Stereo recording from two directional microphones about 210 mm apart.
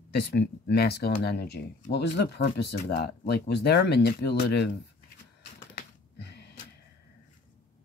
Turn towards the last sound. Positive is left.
turn(degrees=50)  # may be behind; listen again after turning